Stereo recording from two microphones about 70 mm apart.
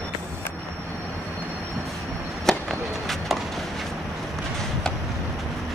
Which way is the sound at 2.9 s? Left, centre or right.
Centre.